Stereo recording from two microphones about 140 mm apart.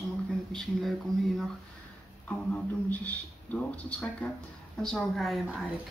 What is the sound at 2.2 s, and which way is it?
A man's voice, 10° left (ahead or behind).